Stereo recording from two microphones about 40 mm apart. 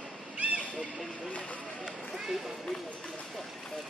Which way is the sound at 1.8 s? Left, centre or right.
Centre.